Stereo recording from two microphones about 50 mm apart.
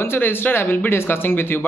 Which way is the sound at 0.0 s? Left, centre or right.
Left.